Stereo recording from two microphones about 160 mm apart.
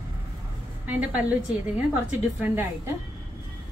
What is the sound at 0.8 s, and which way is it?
A woman's voice, 10° right (ahead or behind).